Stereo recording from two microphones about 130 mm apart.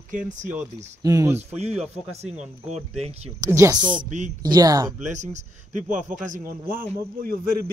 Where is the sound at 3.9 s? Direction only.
70° right (ahead or behind).